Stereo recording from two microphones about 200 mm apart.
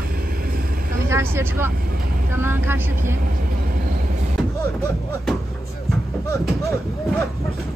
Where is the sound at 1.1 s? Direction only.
10° right (ahead or behind).